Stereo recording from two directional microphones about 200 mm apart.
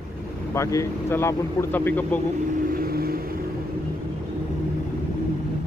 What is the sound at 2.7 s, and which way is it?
Vehicle, 50° right (ahead or behind).